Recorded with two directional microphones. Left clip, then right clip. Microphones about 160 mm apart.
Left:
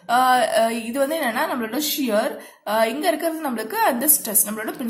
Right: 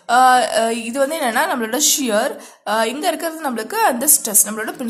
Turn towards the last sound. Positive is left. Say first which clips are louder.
# right 5 dB
turn(degrees=-20)  # may be behind; listen again after turning